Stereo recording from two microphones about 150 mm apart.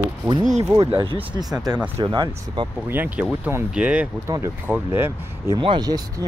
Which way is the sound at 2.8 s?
10° right (ahead or behind).